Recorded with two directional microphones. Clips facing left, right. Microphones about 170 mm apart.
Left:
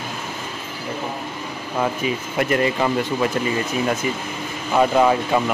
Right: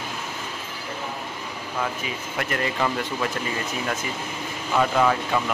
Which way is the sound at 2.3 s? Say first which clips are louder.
Left 6 dB; 15° left (ahead or behind).